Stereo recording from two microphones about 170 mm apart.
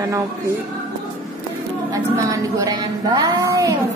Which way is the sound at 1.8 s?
20° right (ahead or behind).